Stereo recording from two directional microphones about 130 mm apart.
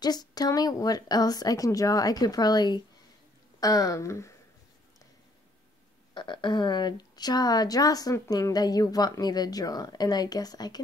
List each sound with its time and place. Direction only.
0.0 s speech: 30° left (ahead or behind)
6.1 s a woman's voice: 35° left (ahead or behind)